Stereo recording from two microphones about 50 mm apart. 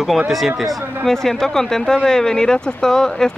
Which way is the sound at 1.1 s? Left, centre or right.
Centre.